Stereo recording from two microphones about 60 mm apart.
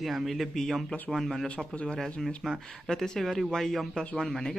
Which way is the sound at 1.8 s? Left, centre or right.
Centre.